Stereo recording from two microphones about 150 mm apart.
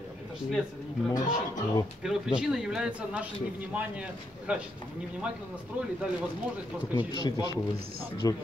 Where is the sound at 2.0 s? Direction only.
5° right (ahead or behind).